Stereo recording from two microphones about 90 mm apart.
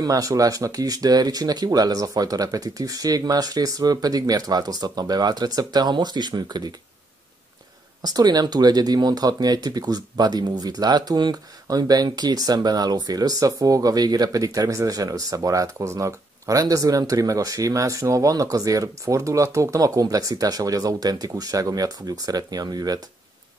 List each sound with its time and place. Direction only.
0.0 s speech: 40° right (ahead or behind)
8.0 s speech: 50° right (ahead or behind)